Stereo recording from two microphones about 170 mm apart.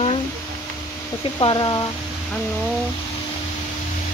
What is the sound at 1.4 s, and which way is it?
Speech, 25° left (ahead or behind).